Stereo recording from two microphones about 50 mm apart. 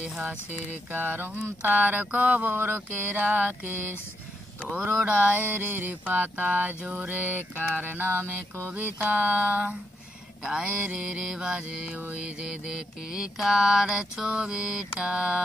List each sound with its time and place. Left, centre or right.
0.8 s mantra: right
2.5 s a sound: right
5.0 s mantra: right